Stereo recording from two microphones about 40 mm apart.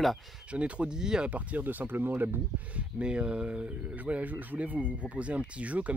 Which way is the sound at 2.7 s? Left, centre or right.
Right.